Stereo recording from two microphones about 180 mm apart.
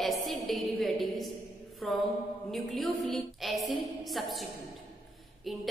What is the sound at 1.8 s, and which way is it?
A woman's voice, centre (ahead or behind).